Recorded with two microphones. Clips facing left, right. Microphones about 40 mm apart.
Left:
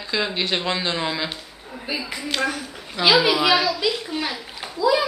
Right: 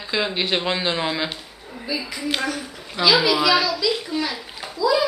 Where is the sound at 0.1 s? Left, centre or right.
Centre.